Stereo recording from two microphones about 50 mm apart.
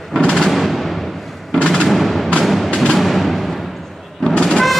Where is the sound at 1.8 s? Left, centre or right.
Centre.